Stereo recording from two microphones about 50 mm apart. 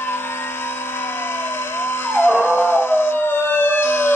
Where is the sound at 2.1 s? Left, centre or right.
Left.